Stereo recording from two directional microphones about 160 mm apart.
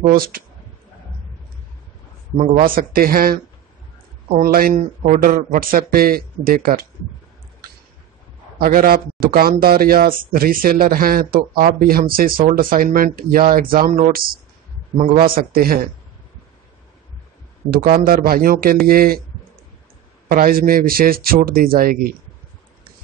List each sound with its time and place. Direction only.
0.0 s a man's voice: 65° right (ahead or behind)
2.3 s a man's voice: 50° right (ahead or behind)
8.5 s a man's voice: 65° right (ahead or behind)
17.6 s a man's voice: 65° right (ahead or behind)
20.2 s a man's voice: 65° right (ahead or behind)